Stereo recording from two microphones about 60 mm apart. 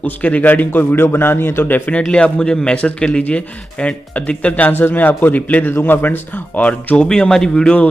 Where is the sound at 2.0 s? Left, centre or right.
Centre.